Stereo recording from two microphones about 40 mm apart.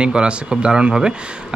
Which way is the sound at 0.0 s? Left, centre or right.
Right.